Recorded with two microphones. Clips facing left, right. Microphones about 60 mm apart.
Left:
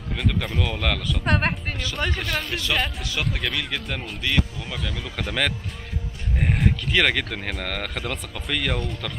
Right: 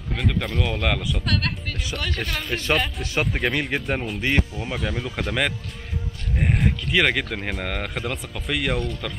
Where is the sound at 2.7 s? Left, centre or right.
Centre.